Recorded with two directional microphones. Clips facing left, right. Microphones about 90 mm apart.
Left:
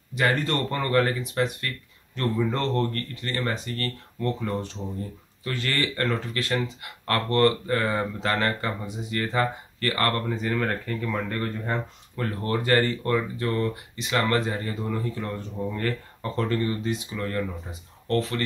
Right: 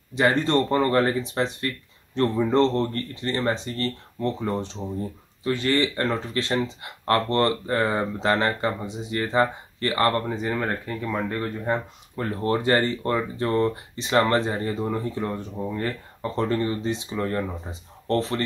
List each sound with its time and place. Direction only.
0.1 s speech: 25° right (ahead or behind)